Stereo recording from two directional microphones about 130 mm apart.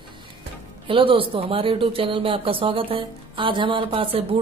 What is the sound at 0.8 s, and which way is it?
Speech, 45° right (ahead or behind).